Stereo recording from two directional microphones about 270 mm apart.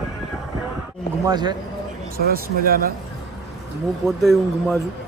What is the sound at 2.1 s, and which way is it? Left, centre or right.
Speech, right.